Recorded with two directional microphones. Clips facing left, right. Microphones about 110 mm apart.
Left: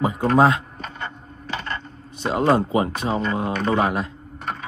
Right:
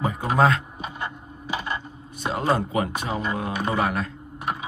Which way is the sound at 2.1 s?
25° left (ahead or behind).